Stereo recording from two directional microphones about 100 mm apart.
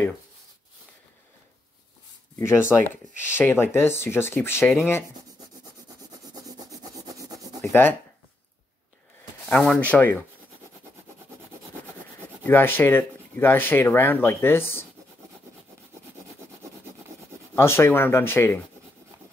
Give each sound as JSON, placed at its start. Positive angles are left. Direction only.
{"t": 2.3, "sound": "speech", "side_deg": 25}
{"t": 6.2, "sound": "rub", "side_deg": -40}
{"t": 7.6, "sound": "speech", "side_deg": 20}
{"t": 9.5, "sound": "speech", "side_deg": 10}
{"t": 12.4, "sound": "speech", "side_deg": 20}
{"t": 17.6, "sound": "speech", "side_deg": 25}